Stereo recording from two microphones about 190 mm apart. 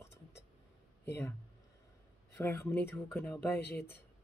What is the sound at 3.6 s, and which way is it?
Speech, 60° left (ahead or behind).